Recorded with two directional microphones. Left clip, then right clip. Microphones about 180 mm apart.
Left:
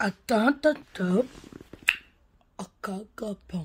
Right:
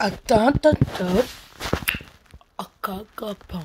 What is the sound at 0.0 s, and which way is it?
Speech, 10° left (ahead or behind).